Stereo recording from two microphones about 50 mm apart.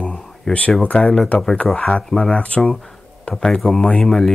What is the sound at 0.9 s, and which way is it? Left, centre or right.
Speech, left.